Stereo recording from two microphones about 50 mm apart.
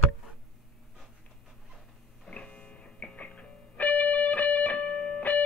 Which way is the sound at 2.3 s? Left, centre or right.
Left.